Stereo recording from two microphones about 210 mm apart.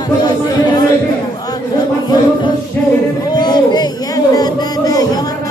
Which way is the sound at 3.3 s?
20° left (ahead or behind).